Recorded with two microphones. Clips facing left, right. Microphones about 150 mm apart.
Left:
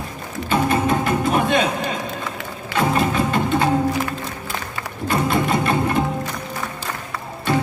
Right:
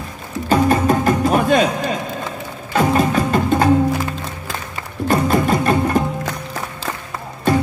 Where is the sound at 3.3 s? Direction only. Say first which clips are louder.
Right 3 dB; 40° right (ahead or behind).